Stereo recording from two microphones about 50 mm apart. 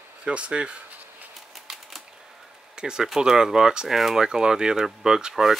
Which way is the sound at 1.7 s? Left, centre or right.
Centre.